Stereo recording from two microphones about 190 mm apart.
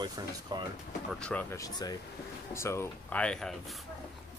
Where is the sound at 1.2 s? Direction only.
10° left (ahead or behind).